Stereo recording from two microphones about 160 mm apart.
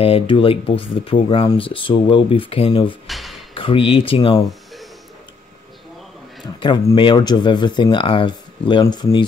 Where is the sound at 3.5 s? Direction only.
35° left (ahead or behind).